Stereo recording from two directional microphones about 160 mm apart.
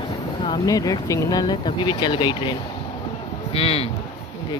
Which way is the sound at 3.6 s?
35° left (ahead or behind).